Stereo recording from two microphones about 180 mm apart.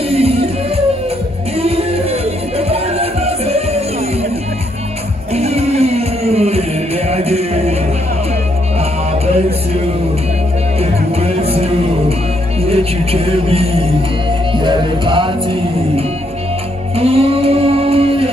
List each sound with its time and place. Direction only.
0.1 s music: 35° right (ahead or behind)
5.3 s music: 35° right (ahead or behind)
10.8 s music: 35° right (ahead or behind)
16.9 s music: 35° right (ahead or behind)